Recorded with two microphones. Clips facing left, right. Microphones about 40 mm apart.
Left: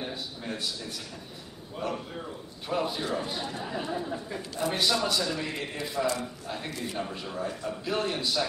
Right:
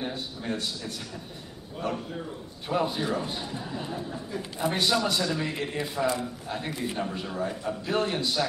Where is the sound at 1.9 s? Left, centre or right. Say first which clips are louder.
Right 3 dB; centre.